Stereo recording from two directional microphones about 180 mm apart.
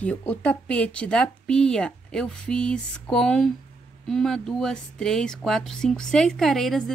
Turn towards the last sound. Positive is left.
turn(degrees=0)  # may be behind; listen again after turning